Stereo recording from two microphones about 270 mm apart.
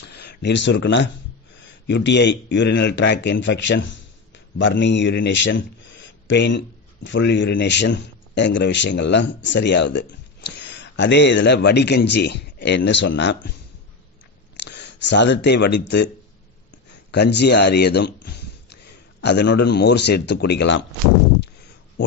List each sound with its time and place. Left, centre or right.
0.1 s a man's voice: left
14.6 s speech: left
17.1 s a man's voice: left